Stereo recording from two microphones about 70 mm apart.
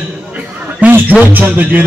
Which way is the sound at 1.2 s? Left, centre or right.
Right.